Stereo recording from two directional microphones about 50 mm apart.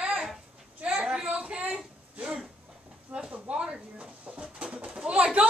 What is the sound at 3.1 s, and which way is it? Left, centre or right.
Bird, right.